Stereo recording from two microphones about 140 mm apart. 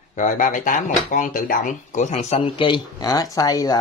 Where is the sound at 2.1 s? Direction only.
50° left (ahead or behind); by 3.8 s 25° left (ahead or behind).